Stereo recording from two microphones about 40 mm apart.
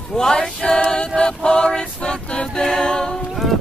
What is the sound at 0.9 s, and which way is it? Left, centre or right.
Music, left.